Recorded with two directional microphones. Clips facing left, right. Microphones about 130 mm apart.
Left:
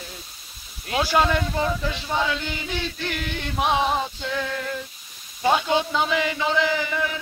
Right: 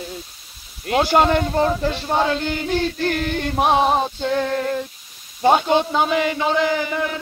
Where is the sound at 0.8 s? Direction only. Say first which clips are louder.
Right 5 dB; 45° right (ahead or behind).